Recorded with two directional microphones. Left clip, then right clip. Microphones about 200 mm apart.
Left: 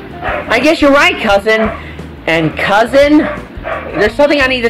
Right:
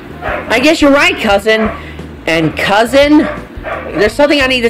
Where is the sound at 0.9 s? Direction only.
45° right (ahead or behind).